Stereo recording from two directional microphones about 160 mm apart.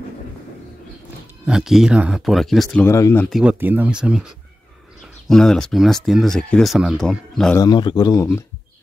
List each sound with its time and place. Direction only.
1.4 s speech: 5° right (ahead or behind)
2.8 s speech: 15° left (ahead or behind)
3.3 s speech: centre (ahead or behind)
7.5 s a man's voice: 25° left (ahead or behind)